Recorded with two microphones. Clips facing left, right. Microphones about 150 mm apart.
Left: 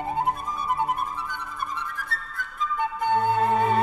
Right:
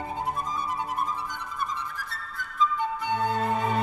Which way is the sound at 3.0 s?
50° left (ahead or behind).